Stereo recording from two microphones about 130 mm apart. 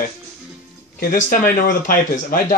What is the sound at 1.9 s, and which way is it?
Speech, 90° left.